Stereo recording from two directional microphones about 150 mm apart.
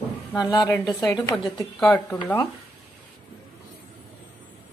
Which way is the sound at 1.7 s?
Centre (ahead or behind).